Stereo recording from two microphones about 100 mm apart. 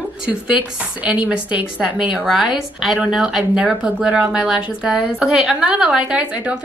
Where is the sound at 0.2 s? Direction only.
10° right (ahead or behind).